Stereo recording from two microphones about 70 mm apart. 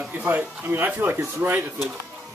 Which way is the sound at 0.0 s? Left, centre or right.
Right.